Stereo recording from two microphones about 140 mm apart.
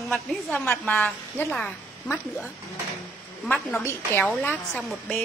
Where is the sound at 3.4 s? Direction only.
5° left (ahead or behind).